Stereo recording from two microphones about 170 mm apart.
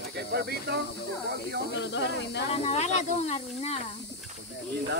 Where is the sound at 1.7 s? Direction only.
90° left.